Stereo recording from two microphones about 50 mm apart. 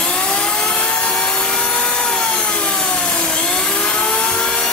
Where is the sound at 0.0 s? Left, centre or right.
Centre.